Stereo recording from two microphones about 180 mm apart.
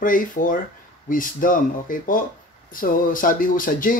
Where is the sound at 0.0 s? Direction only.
50° left (ahead or behind).